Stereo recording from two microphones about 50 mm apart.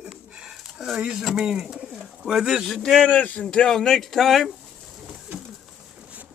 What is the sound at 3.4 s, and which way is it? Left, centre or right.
Speech, centre.